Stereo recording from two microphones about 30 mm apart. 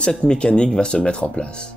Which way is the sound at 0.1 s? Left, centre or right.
Left.